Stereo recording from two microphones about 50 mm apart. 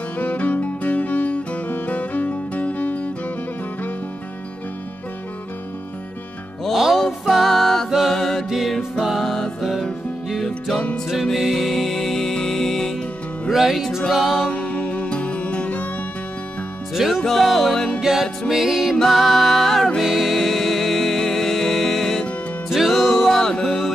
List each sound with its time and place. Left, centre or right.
0.2 s music: left
6.6 s music: centre
13.5 s music: centre
14.5 s music: left
16.9 s music: centre
18.5 s music: centre